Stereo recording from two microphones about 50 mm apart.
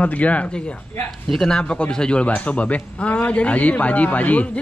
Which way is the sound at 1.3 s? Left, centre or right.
Centre.